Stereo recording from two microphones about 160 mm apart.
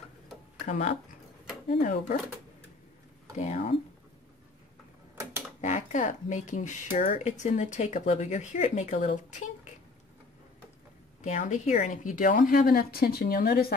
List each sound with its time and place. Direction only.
0.7 s speech: 45° left (ahead or behind)
3.3 s speech: 45° left (ahead or behind)
5.6 s speech: 50° left (ahead or behind)
11.2 s a woman's voice: 50° left (ahead or behind); by 13.7 s 75° left (ahead or behind)